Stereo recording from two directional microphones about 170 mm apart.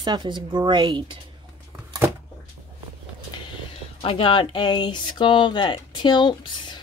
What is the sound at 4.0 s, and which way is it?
Speech, 30° left (ahead or behind).